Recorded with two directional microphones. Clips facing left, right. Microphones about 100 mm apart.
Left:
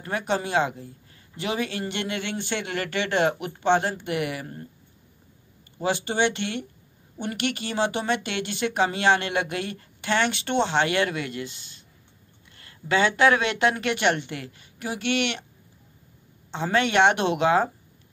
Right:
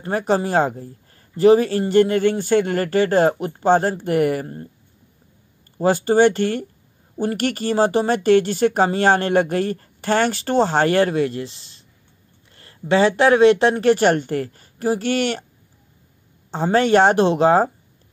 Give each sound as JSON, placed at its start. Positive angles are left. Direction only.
{"t": 0.0, "sound": "speech", "side_deg": -35}
{"t": 5.8, "sound": "speech", "side_deg": -40}
{"t": 16.4, "sound": "speech", "side_deg": -40}